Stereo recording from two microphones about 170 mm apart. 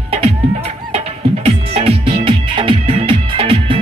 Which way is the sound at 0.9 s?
35° right (ahead or behind).